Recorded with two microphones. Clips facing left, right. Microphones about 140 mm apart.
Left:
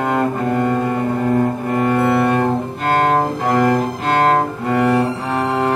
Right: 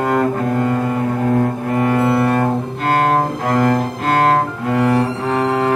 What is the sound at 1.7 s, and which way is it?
Cello, centre (ahead or behind).